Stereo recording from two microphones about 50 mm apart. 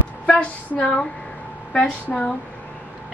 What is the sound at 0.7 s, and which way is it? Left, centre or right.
Speech, left.